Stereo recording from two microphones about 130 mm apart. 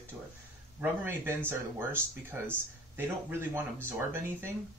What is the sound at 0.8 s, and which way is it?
Speech, 15° right (ahead or behind).